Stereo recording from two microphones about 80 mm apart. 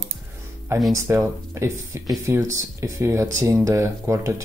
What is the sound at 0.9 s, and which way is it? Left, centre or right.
Speech, right.